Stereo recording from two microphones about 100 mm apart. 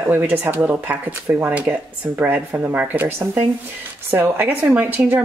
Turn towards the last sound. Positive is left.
turn(degrees=-20)  # may be behind; listen again after turning